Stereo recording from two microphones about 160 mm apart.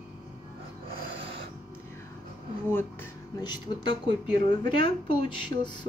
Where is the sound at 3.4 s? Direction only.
25° left (ahead or behind).